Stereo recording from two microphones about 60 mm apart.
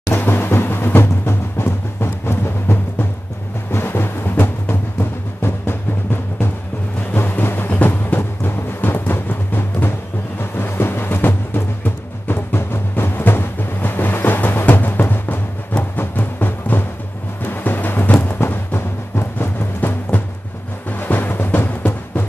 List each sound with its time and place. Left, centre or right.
0.1 s timpani: left
3.7 s music: left
7.2 s music: left